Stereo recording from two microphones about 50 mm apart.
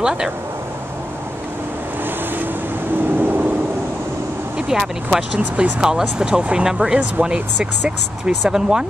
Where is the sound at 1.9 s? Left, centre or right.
Right.